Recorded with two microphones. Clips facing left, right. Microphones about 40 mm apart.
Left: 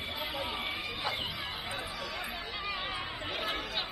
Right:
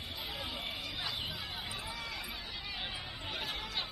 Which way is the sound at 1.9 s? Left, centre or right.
Left.